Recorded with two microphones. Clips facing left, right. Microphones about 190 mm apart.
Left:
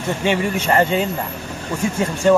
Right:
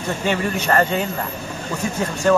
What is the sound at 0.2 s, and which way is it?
A man's voice, 15° left (ahead or behind).